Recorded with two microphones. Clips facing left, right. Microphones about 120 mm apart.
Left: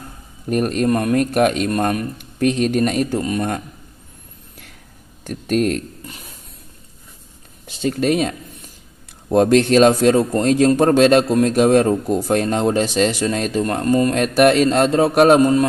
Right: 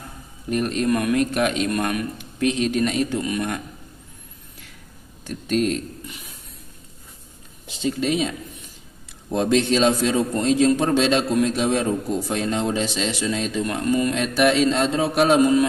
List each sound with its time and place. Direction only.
0.5 s a man's voice: 50° left (ahead or behind)
5.3 s a man's voice: 50° left (ahead or behind)
7.6 s a man's voice: 55° left (ahead or behind)